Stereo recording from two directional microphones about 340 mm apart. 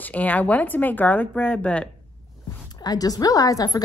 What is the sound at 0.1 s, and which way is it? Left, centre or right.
A woman's voice, centre.